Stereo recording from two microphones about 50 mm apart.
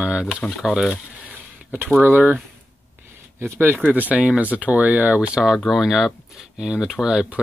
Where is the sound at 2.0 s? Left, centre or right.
Right.